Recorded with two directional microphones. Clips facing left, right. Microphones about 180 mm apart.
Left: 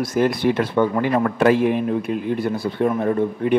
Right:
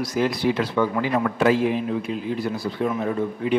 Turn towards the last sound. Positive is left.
turn(degrees=55)  # may be behind; listen again after turning